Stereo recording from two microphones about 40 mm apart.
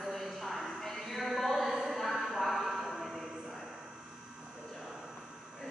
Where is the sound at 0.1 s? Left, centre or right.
Centre.